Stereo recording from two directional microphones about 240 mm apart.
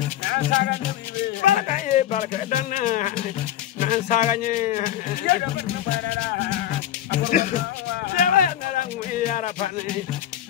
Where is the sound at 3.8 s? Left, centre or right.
Left.